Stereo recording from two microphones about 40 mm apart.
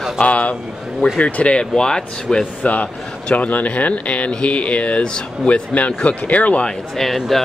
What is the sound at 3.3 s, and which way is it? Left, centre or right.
Speech, left.